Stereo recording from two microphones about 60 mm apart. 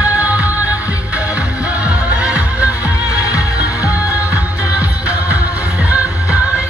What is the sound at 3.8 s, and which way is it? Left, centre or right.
Music, left.